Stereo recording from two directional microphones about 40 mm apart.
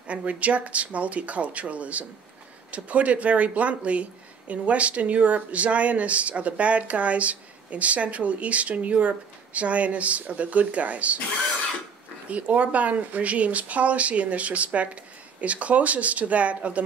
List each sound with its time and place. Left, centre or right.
0.0 s speech: right
12.3 s speech: right